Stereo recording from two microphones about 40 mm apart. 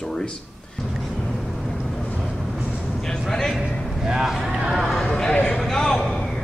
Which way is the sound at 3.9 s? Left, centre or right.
Centre.